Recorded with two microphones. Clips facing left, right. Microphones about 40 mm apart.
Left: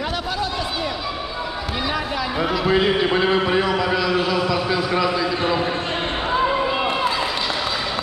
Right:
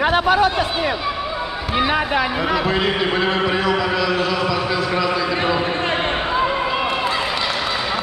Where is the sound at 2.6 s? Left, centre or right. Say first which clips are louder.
Left 1 dB; centre.